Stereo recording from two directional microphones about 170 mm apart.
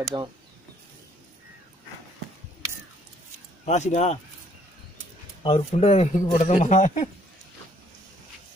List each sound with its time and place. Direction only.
0.1 s speech: 25° right (ahead or behind)
3.6 s speech: 45° left (ahead or behind)
5.4 s speech: 40° left (ahead or behind)